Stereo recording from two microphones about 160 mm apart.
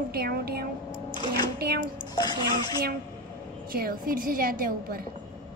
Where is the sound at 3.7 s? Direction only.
65° right (ahead or behind).